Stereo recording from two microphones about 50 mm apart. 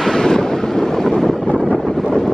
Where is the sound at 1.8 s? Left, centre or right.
Centre.